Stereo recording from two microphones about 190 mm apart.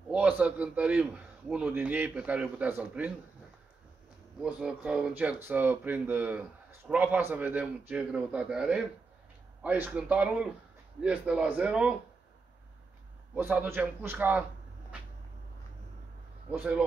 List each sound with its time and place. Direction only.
0.1 s speech: 5° right (ahead or behind)
4.4 s speech: 5° right (ahead or behind)
13.3 s speech: 10° right (ahead or behind)
16.4 s speech: 10° right (ahead or behind)